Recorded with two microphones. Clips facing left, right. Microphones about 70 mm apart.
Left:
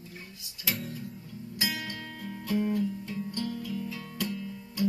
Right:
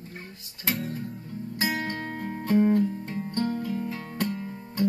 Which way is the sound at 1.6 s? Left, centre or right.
Right.